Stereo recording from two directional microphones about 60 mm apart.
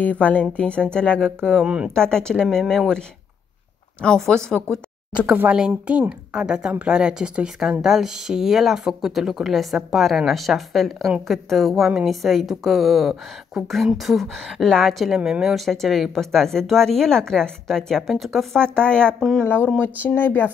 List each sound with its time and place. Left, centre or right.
0.0 s speech: left
1.6 s speech: centre
2.0 s speech: centre
4.0 s speech: centre
5.9 s a woman's voice: centre
15.1 s speech: centre
18.6 s speech: centre
19.1 s speech: centre
19.4 s speech: left